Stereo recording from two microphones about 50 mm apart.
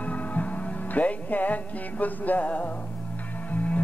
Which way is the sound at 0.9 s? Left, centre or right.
Left.